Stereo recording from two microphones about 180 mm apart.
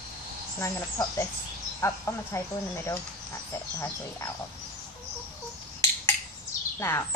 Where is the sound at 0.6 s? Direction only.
15° left (ahead or behind).